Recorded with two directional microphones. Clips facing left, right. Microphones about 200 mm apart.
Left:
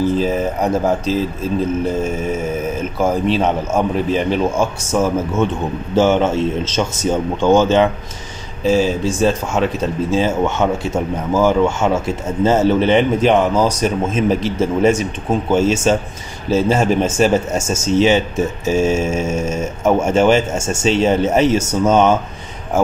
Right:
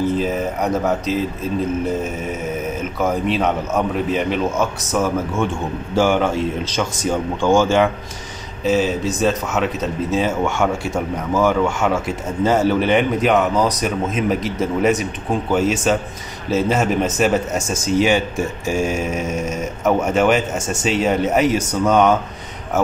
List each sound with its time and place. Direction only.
0.2 s speech: 30° left (ahead or behind)
3.0 s speech: 30° left (ahead or behind)
8.6 s speech: 30° left (ahead or behind)